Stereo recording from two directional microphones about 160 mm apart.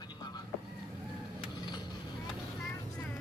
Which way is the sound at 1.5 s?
25° left (ahead or behind).